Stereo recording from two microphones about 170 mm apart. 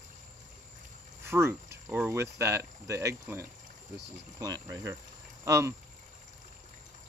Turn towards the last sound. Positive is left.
turn(degrees=-15)  # may be behind; listen again after turning